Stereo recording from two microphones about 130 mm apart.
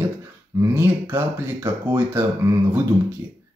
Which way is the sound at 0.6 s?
20° right (ahead or behind).